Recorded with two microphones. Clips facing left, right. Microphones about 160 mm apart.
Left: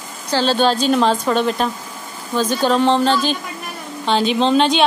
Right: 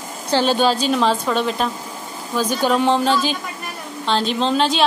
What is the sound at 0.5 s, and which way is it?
Speech, 5° right (ahead or behind).